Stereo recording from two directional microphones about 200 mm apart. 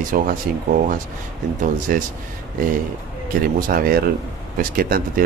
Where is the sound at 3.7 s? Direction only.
45° right (ahead or behind).